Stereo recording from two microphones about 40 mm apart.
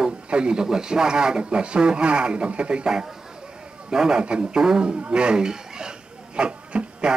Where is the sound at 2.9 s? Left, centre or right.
Centre.